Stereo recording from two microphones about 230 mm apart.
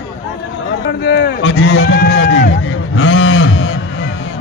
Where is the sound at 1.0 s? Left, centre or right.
Left.